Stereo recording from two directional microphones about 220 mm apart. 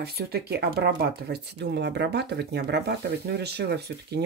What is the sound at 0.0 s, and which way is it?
Speech, 45° right (ahead or behind).